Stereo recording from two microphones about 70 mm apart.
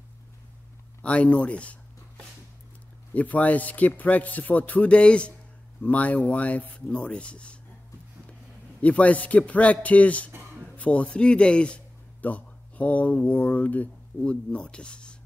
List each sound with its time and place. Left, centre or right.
1.0 s speech: centre
3.2 s a man's voice: left
8.8 s a man's voice: left